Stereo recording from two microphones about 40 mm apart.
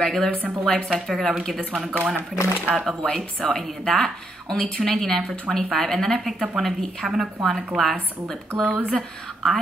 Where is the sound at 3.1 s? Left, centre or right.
Centre.